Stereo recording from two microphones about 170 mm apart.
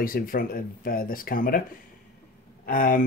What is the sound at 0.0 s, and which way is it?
Speech, 55° left (ahead or behind).